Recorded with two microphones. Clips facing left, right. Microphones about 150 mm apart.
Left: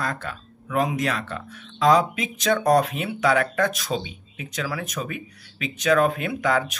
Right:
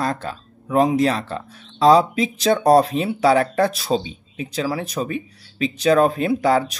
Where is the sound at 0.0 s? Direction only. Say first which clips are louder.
Right 5 dB; 30° right (ahead or behind).